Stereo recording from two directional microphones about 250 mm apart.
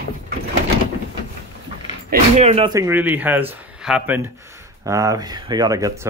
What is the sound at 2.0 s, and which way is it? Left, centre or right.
Speech, right.